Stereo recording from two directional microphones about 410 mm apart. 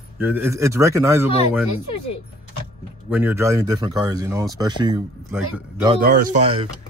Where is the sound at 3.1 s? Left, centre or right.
Centre.